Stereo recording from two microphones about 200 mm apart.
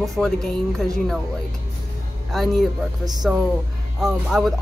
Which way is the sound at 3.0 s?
20° right (ahead or behind).